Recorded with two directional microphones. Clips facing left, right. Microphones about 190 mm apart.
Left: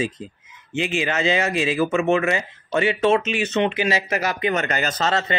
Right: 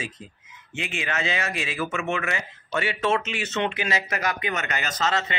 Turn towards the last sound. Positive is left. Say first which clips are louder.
# left 4 dB
turn(degrees=35)  # may be behind; listen again after turning